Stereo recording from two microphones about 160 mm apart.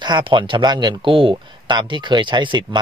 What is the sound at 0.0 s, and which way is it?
Speech, 30° right (ahead or behind).